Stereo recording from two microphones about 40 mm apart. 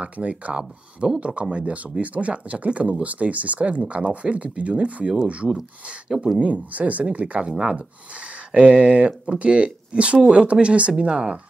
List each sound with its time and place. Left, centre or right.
0.0 s speech: right
6.1 s speech: centre
6.4 s speech: right